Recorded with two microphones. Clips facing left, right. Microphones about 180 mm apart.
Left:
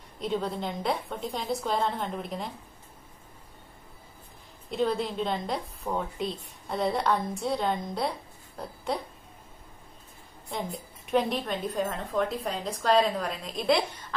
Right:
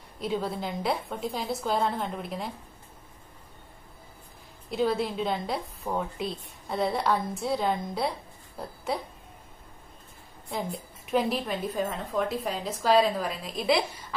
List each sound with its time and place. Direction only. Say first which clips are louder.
0.2 s a woman's voice: even; 5° right (ahead or behind)
4.6 s a woman's voice: right 1 dB; centre (ahead or behind)
8.5 s a sound: even; centre (ahead or behind)
10.5 s a woman's voice: right 1 dB; centre (ahead or behind)